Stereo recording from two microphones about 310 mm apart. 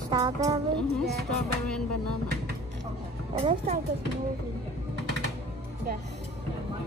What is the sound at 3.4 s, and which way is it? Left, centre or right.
Speech, centre.